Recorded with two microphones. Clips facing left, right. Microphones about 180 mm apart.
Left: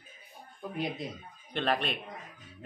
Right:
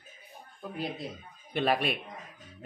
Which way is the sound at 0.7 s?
5° right (ahead or behind).